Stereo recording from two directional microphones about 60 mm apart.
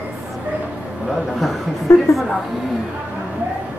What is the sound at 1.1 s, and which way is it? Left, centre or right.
Speech, centre.